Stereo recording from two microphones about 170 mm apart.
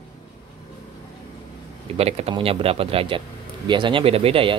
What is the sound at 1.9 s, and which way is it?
Speech, 35° right (ahead or behind).